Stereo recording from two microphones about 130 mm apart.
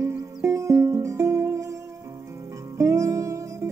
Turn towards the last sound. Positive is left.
turn(degrees=-25)  # may be behind; listen again after turning